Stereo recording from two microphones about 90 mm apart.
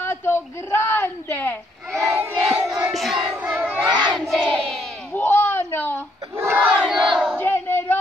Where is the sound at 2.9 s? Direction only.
Centre (ahead or behind).